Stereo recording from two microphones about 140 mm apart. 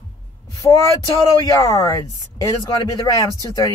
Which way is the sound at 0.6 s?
20° left (ahead or behind).